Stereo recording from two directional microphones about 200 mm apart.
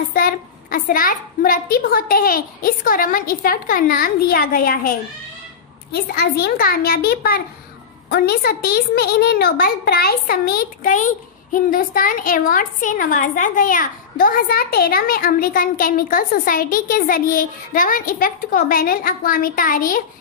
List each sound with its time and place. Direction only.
0.1 s a woman's voice: 45° left (ahead or behind)